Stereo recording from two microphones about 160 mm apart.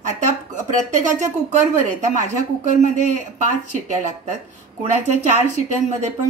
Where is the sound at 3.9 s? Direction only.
50° right (ahead or behind).